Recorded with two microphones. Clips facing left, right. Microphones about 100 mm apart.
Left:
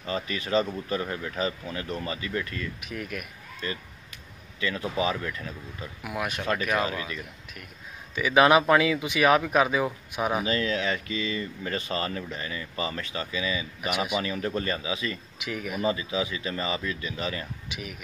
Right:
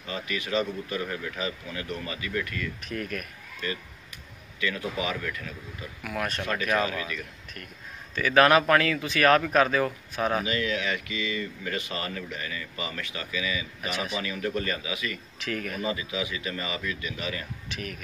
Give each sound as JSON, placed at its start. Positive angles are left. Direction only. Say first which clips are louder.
{"t": 0.0, "sound": "speech", "louder": "left 2 dB", "side_deg": 35}
{"t": 2.8, "sound": "speech", "louder": "right 2 dB", "side_deg": 10}
{"t": 3.6, "sound": "a man's voice", "louder": "right 1 dB", "side_deg": 30}
{"t": 6.0, "sound": "speech", "louder": "even", "side_deg": 15}
{"t": 6.8, "sound": "a man's voice", "louder": "even", "side_deg": 25}
{"t": 8.1, "sound": "speech", "louder": "even", "side_deg": 15}
{"t": 10.4, "sound": "speech", "louder": "left 2 dB", "side_deg": 35}
{"t": 13.8, "sound": "speech", "louder": "left 4 dB", "side_deg": 15}
{"t": 14.2, "sound": "speech", "louder": "left 1 dB", "side_deg": 30}
{"t": 15.3, "sound": "speech", "louder": "even", "side_deg": 10}
{"t": 15.8, "sound": "speech", "louder": "left 8 dB", "side_deg": 30}
{"t": 17.6, "sound": "speech", "louder": "right 1 dB", "side_deg": 10}